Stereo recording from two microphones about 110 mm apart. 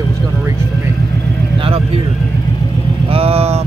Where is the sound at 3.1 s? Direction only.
65° right (ahead or behind).